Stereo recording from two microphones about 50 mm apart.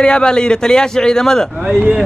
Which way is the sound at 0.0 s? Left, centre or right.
Centre.